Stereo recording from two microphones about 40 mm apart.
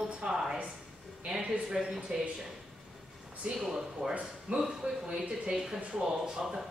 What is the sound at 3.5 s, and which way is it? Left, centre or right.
Speech, centre.